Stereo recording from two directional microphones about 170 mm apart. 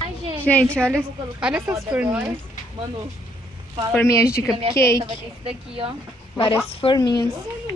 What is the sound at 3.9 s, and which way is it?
Speech, 15° left (ahead or behind).